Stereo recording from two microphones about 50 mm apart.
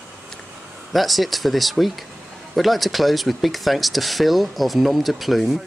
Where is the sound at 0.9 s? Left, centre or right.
Centre.